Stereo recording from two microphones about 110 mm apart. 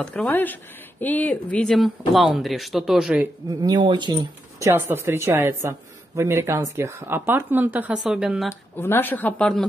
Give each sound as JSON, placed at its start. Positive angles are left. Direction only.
{"t": 0.0, "sound": "speech", "side_deg": 10}
{"t": 3.4, "sound": "speech", "side_deg": -40}
{"t": 4.6, "sound": "speech", "side_deg": -25}
{"t": 7.9, "sound": "speech", "side_deg": -5}
{"t": 8.7, "sound": "a woman's voice", "side_deg": 20}